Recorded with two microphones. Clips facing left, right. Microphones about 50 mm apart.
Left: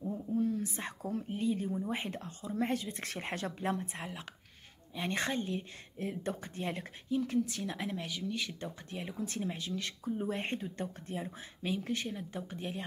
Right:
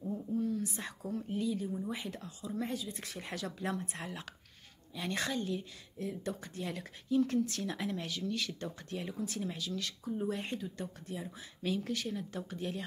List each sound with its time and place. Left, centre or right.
0.0 s a sound: centre
0.4 s speech: left
2.7 s speech: left
5.9 s speech: left
6.3 s speech: left
7.1 s speech: centre; by 11.3 s left
11.6 s speech: left